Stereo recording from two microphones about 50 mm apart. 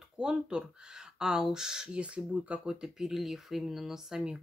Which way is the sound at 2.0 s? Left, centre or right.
Right.